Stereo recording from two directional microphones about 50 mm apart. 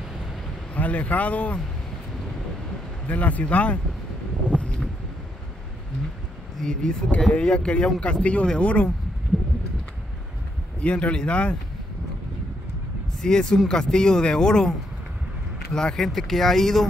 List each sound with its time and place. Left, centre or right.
0.7 s a man's voice: left
3.1 s a man's voice: left
4.6 s a sound: left
6.6 s a man's voice: centre
9.3 s a sound: left
10.8 s a man's voice: left
13.2 s speech: centre
15.7 s speech: centre